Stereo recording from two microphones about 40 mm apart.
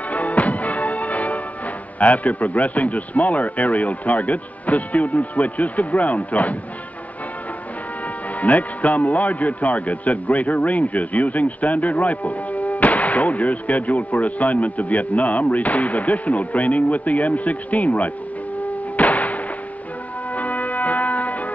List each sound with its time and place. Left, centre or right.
0.1 s music: left
2.0 s a man's voice: left
8.4 s a man's voice: left
18.6 s a sound: left
20.3 s music: left